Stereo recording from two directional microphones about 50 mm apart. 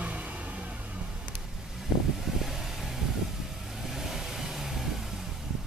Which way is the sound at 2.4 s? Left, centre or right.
Centre.